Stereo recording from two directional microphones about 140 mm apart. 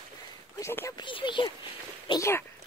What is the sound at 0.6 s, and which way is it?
Speech, 20° left (ahead or behind).